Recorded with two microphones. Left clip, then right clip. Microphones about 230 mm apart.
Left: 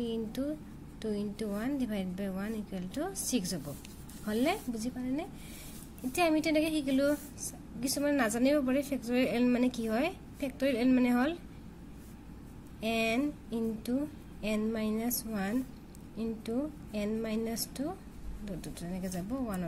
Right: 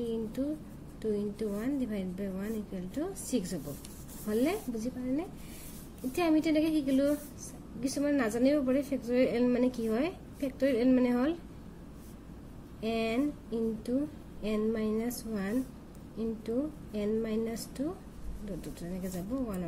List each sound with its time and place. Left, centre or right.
0.0 s a sound: left
1.1 s speech: left
12.8 s speech: left